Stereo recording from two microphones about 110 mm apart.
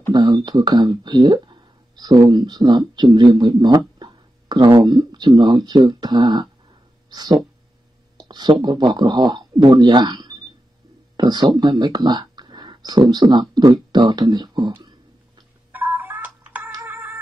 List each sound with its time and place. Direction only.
0.1 s speech: 40° right (ahead or behind)
15.7 s a sound: 15° right (ahead or behind)
16.8 s music: 15° right (ahead or behind)